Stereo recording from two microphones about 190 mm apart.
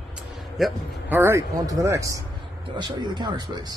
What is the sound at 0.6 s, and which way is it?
Speech, 10° right (ahead or behind).